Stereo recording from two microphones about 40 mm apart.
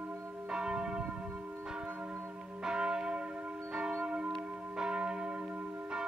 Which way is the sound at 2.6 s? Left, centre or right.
Centre.